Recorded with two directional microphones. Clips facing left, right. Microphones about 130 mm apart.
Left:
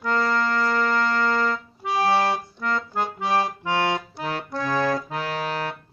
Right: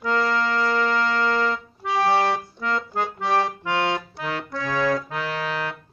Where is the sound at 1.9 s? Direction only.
5° left (ahead or behind).